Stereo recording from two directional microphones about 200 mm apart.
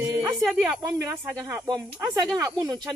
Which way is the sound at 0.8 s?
15° right (ahead or behind).